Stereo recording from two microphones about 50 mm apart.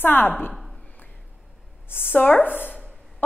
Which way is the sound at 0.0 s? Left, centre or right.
Left.